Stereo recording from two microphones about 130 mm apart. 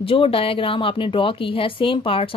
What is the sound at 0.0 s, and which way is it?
Speech, 45° left (ahead or behind).